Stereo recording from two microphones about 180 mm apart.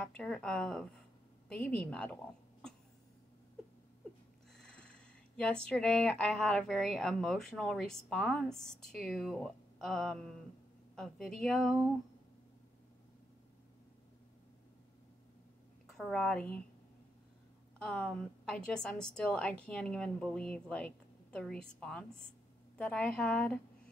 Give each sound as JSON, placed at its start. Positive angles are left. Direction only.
{"t": 0.0, "sound": "a woman's voice", "side_deg": 5}
{"t": 4.6, "sound": "a sound", "side_deg": 5}
{"t": 5.7, "sound": "a woman's voice", "side_deg": 5}
{"t": 15.9, "sound": "a woman's voice", "side_deg": 0}
{"t": 17.8, "sound": "a woman's voice", "side_deg": 5}